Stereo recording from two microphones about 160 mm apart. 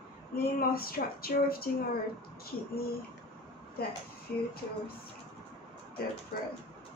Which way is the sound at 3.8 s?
75° left (ahead or behind).